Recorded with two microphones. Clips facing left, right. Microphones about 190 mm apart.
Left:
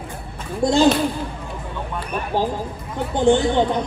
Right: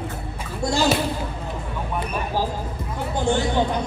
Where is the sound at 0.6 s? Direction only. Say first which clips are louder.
Left 6 dB; 20° left (ahead or behind).